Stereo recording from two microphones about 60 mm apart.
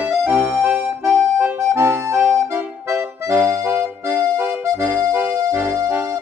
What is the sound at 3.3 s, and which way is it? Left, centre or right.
Music, right.